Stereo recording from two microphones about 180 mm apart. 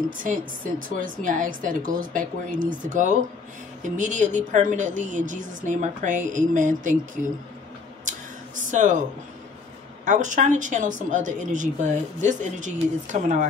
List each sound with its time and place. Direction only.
0.2 s speech: 50° right (ahead or behind)
8.7 s speech: 45° right (ahead or behind)
10.0 s speech: 45° right (ahead or behind)